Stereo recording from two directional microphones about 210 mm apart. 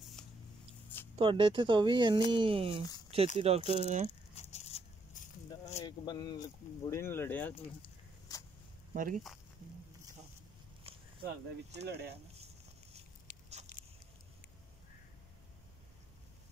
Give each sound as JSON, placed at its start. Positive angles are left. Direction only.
{"t": 1.1, "sound": "speech", "side_deg": -25}
{"t": 4.4, "sound": "biting", "side_deg": 30}
{"t": 5.9, "sound": "speech", "side_deg": 20}
{"t": 7.5, "sound": "a sound", "side_deg": 20}
{"t": 8.9, "sound": "speech", "side_deg": -40}
{"t": 11.7, "sound": "speech", "side_deg": -50}
{"t": 13.3, "sound": "a sound", "side_deg": 40}